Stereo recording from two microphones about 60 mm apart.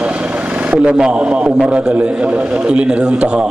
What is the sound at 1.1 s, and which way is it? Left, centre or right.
A man's voice, centre.